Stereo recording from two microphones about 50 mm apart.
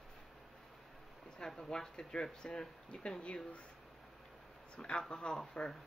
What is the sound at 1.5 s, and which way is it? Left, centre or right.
Speech, centre.